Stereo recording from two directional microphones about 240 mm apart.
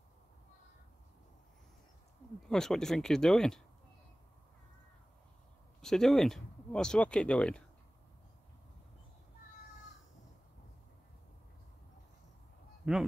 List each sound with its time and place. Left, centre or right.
2.4 s speech: centre
5.8 s speech: centre
12.8 s honk: centre